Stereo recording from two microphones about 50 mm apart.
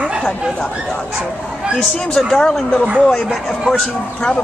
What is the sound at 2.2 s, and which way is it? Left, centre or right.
Speech, centre.